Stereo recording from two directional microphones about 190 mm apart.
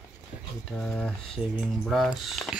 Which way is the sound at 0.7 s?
5° left (ahead or behind).